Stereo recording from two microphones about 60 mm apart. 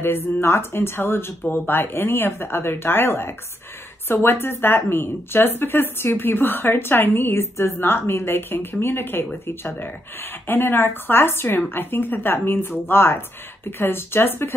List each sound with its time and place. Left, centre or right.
0.0 s speech: left